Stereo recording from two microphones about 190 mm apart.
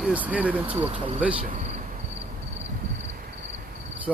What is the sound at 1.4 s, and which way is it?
Cricket, 40° right (ahead or behind).